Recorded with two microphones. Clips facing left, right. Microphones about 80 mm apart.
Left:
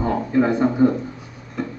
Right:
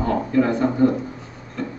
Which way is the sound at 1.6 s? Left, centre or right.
Centre.